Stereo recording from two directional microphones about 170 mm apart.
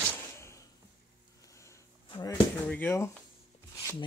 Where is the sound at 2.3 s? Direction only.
10° left (ahead or behind).